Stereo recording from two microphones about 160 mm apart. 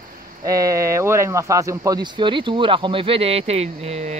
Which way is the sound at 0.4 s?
20° right (ahead or behind).